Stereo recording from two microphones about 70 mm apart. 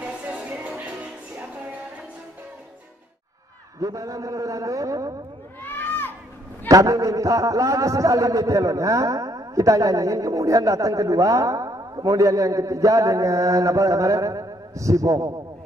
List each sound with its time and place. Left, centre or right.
0.0 s music: centre
3.8 s a man's voice: right
5.6 s crowd: left
6.7 s a man's voice: right